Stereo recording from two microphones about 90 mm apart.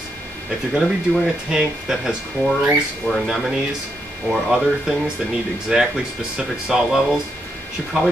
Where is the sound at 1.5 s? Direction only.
10° right (ahead or behind).